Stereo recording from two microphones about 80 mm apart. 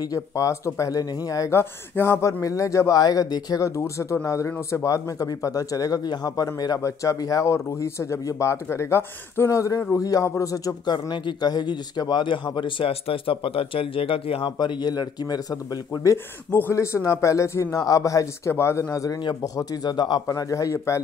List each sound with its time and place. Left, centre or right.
0.1 s speech: left
1.5 s speech: left
2.4 s speech: left
3.0 s speech: left
3.6 s speech: left
11.1 s a man's voice: left
14.4 s speech: left
15.9 s speech: left
18.5 s speech: left
20.2 s speech: left